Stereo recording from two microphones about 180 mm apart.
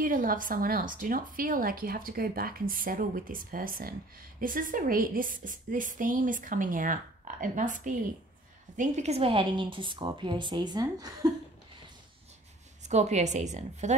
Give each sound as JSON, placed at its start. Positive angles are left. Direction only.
{"t": 0.0, "sound": "a woman's voice", "side_deg": -50}
{"t": 12.8, "sound": "a woman's voice", "side_deg": -40}